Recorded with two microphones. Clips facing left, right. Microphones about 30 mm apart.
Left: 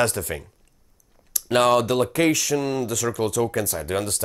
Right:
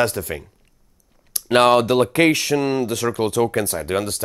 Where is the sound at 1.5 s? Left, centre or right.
Right.